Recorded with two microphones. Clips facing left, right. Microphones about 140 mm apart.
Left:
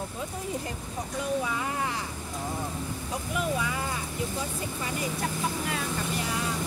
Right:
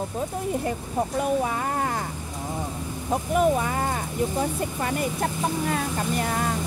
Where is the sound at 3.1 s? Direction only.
45° right (ahead or behind).